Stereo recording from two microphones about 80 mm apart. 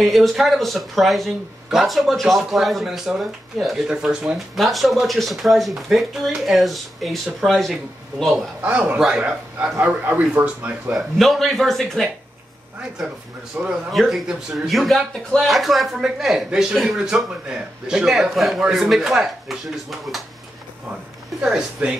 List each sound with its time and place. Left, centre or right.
0.0 s speech: centre
8.6 s speech: centre
10.9 s speech: centre
13.6 s speech: centre
21.4 s speech: centre